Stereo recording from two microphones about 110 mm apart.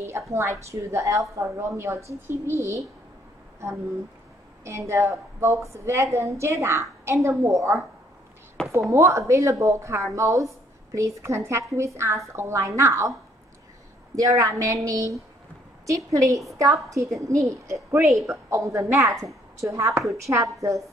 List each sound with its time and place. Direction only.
0.3 s a woman's voice: 25° right (ahead or behind)
4.6 s a woman's voice: 25° right (ahead or behind)
8.6 s a sound: 5° left (ahead or behind)
8.9 s a woman's voice: 30° right (ahead or behind)
14.1 s a woman's voice: 30° right (ahead or behind)